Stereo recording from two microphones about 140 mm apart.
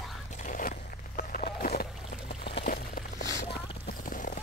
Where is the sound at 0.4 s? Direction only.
75° left (ahead or behind).